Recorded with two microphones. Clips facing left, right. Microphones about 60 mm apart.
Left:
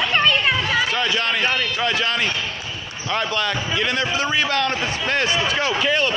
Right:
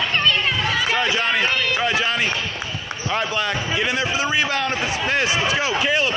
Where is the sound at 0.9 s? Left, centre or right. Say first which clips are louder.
Right 1 dB; centre.